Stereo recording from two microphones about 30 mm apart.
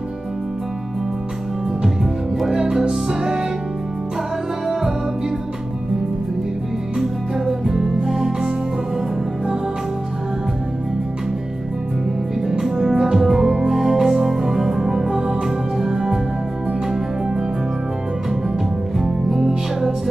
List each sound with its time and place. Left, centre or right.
2.4 s music: centre
7.0 s music: centre
12.4 s music: right